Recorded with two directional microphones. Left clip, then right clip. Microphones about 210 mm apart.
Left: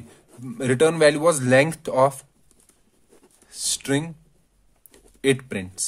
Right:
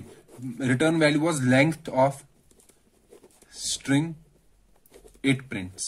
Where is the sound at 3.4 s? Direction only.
55° left (ahead or behind).